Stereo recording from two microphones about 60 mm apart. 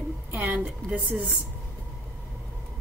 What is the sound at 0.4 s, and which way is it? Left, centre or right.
Speech, centre.